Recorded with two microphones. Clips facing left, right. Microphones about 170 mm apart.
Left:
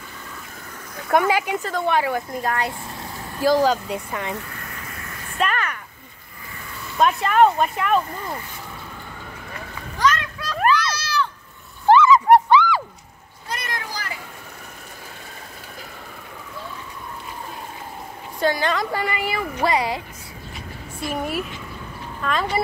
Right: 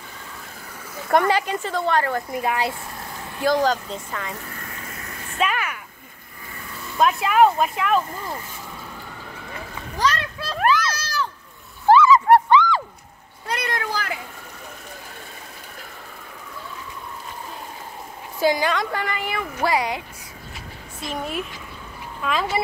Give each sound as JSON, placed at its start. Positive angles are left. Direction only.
{"t": 1.0, "sound": "speech", "side_deg": 5}
{"t": 2.3, "sound": "speech", "side_deg": -10}
{"t": 3.3, "sound": "speech", "side_deg": 5}
{"t": 5.4, "sound": "a sound", "side_deg": -5}
{"t": 7.0, "sound": "speech", "side_deg": 0}
{"t": 9.9, "sound": "a sound", "side_deg": -35}
{"t": 11.0, "sound": "a sound", "side_deg": -45}
{"t": 11.9, "sound": "dog", "side_deg": 0}
{"t": 12.3, "sound": "dog", "side_deg": 10}
{"t": 13.5, "sound": "a sound", "side_deg": -65}
{"t": 18.7, "sound": "speech", "side_deg": 5}
{"t": 21.1, "sound": "speech", "side_deg": 10}
{"t": 22.2, "sound": "speech", "side_deg": -5}